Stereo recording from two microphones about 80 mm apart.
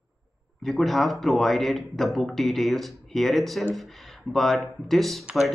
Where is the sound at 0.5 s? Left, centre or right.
Centre.